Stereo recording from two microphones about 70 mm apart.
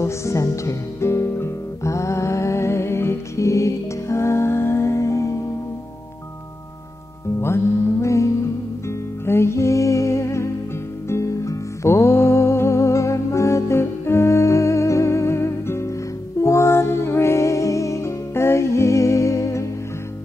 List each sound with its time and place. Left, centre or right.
0.0 s music: left
7.3 s music: left